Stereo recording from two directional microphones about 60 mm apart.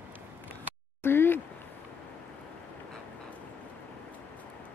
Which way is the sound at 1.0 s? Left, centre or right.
Left.